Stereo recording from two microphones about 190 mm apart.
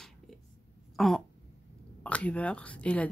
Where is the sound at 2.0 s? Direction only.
5° left (ahead or behind).